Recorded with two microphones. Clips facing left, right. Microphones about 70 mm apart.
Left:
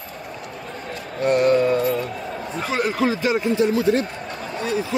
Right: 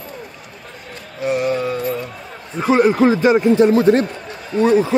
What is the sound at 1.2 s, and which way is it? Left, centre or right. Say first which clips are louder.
Music: left 2 dB; centre.